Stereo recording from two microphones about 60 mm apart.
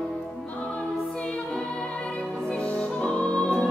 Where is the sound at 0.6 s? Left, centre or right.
Centre.